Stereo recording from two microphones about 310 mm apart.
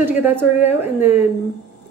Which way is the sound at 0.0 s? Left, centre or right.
Centre.